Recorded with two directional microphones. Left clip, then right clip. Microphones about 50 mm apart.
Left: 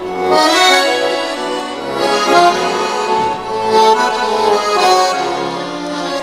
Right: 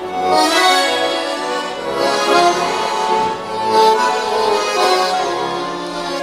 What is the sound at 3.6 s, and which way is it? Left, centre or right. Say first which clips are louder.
Music: left 2 dB; left.